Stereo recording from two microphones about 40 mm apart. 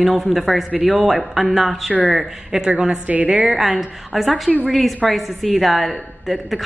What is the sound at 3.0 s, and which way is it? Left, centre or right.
Speech, right.